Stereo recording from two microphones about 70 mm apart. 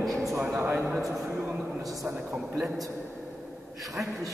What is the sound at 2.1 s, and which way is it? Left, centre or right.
Speech, right.